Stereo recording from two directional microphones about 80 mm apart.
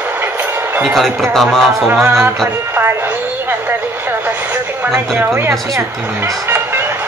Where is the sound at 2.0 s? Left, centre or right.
Right.